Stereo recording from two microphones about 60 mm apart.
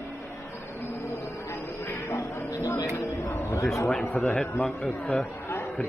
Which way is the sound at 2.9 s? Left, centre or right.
Left.